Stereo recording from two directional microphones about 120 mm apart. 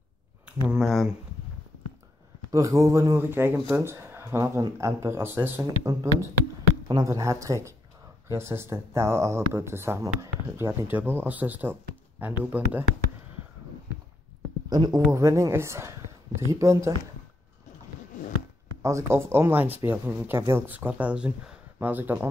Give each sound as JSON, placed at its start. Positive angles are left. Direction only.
{"t": 0.7, "sound": "speech", "side_deg": 0}
{"t": 2.5, "sound": "speech", "side_deg": -25}
{"t": 14.7, "sound": "a man's voice", "side_deg": -35}
{"t": 18.8, "sound": "speech", "side_deg": -25}